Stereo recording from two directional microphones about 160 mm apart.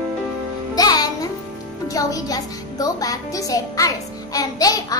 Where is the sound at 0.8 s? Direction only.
25° left (ahead or behind).